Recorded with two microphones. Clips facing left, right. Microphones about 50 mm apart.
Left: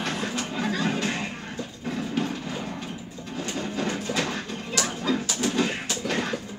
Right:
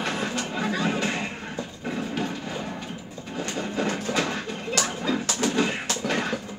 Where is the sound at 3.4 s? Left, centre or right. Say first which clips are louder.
Right 2 dB; centre.